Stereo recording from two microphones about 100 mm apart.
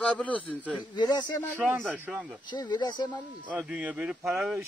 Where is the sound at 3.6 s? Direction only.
10° right (ahead or behind).